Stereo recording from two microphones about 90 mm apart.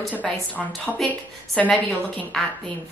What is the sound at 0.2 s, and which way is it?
Speech, centre (ahead or behind).